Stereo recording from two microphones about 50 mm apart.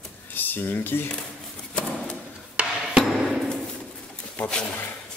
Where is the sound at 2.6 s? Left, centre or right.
Right.